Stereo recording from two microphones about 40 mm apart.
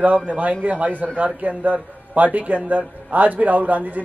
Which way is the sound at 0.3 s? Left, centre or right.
Right.